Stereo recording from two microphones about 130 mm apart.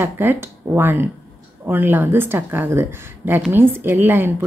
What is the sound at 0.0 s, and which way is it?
A woman's voice, 15° right (ahead or behind).